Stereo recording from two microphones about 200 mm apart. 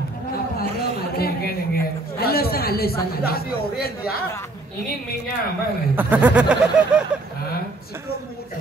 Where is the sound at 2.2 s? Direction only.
50° left (ahead or behind).